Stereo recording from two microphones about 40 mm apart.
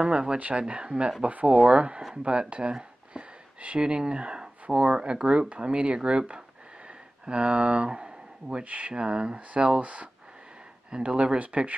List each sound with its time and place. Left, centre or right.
0.0 s speech: right
9.8 s speech: right
10.9 s speech: right
11.3 s speech: right